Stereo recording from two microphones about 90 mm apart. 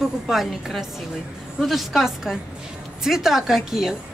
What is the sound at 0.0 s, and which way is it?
A woman's voice, centre (ahead or behind).